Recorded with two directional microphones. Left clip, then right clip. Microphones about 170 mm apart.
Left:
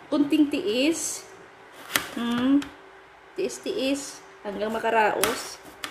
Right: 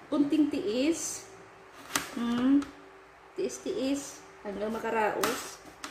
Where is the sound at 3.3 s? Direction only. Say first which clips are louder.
Left 4 dB; 5° right (ahead or behind).